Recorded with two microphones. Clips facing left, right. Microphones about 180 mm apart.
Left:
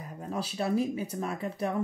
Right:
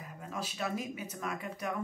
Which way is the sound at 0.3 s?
30° left (ahead or behind).